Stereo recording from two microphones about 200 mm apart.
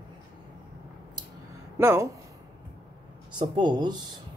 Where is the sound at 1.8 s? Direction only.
15° right (ahead or behind).